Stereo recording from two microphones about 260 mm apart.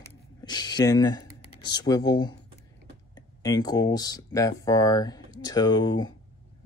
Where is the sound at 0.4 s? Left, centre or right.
Centre.